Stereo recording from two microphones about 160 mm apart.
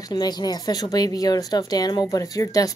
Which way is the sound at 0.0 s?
25° left (ahead or behind).